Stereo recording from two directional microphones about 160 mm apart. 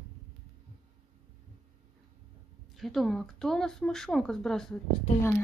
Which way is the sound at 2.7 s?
Centre (ahead or behind).